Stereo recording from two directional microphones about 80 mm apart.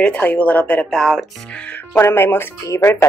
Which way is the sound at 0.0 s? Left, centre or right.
Centre.